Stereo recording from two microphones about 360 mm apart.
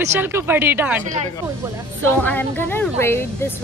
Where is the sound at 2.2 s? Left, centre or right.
Centre.